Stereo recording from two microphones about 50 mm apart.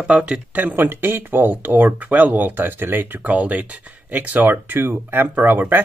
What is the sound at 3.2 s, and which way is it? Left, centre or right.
Speech, right.